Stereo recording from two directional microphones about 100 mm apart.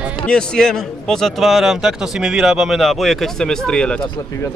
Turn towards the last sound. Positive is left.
turn(degrees=10)  # may be behind; listen again after turning